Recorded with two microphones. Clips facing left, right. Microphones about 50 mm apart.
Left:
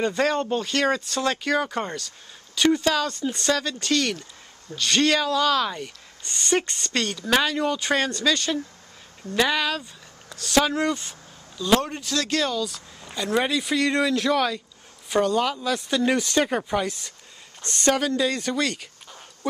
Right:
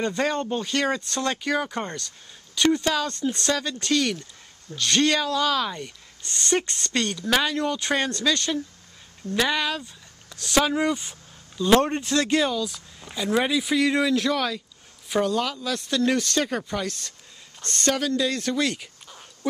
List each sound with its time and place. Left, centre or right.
0.0 s speech: centre; by 12.4 s right
12.5 s speech: centre